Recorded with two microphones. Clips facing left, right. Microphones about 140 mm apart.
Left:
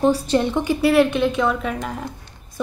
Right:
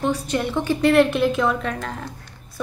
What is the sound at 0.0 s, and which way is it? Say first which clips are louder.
A woman's voice: left 5 dB; 30° left (ahead or behind).